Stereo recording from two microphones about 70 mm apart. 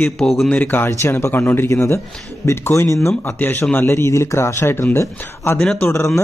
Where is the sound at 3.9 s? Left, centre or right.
Left.